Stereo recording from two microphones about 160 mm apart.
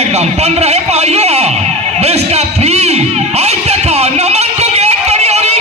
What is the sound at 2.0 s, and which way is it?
Music, 40° right (ahead or behind).